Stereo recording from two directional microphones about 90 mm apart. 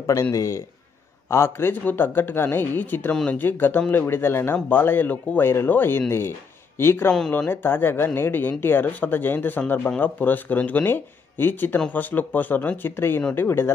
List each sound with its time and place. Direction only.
0.0 s a man's voice: 40° left (ahead or behind)
7.1 s speech: 10° left (ahead or behind)